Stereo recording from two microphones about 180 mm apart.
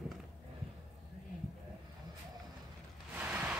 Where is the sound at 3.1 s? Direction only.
10° right (ahead or behind).